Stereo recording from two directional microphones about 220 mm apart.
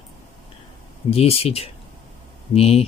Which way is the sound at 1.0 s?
25° left (ahead or behind).